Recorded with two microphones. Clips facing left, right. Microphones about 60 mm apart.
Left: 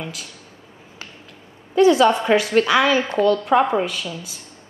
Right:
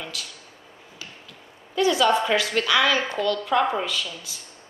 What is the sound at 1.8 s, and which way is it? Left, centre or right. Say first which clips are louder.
A woman's voice: left 6 dB; left.